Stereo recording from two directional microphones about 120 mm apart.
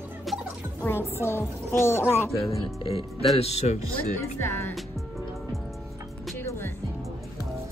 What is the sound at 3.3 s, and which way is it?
Speech, 60° left (ahead or behind).